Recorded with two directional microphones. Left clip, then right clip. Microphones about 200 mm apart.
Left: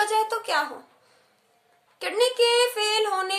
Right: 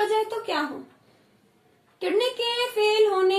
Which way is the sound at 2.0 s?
25° left (ahead or behind).